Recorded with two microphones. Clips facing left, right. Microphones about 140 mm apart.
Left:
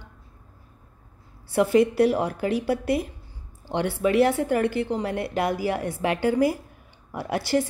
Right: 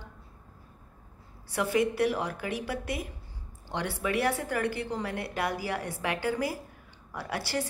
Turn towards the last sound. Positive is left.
turn(degrees=25)  # may be behind; listen again after turning